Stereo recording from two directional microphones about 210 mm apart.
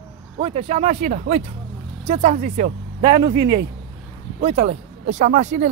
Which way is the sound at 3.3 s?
50° right (ahead or behind).